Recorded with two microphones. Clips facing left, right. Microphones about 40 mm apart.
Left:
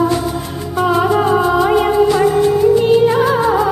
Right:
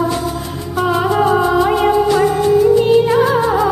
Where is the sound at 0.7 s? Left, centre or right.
Centre.